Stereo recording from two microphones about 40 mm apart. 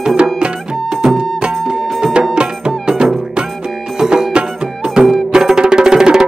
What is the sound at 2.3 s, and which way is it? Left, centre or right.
Music, right.